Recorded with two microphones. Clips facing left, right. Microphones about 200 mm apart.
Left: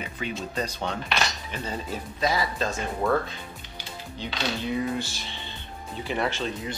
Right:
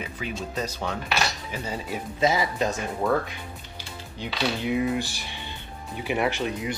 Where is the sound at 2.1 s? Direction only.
20° right (ahead or behind).